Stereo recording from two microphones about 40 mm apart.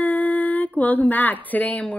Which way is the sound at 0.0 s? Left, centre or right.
Left.